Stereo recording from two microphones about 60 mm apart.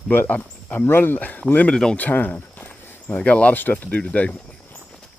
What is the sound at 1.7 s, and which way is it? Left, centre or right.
Speech, centre.